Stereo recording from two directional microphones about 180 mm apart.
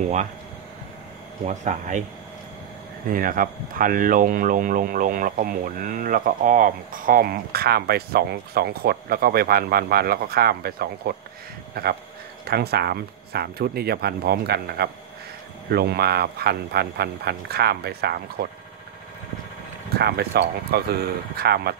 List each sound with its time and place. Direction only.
1.4 s speech: 45° right (ahead or behind)
3.1 s speech: 50° right (ahead or behind)
20.0 s speech: 60° right (ahead or behind)